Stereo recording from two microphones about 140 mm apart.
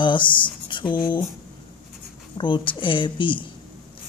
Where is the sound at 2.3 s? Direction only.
35° left (ahead or behind).